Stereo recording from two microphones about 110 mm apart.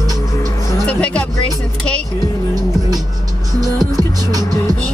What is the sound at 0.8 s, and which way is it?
Music, 10° left (ahead or behind).